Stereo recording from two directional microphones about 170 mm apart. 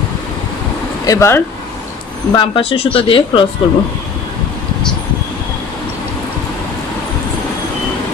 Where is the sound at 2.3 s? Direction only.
30° left (ahead or behind).